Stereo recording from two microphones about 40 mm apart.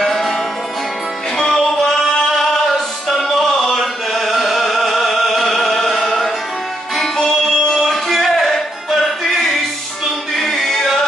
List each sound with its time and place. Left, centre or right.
0.0 s music: centre
1.4 s music: centre
3.1 s a sound: centre
7.2 s music: centre
10.3 s music: centre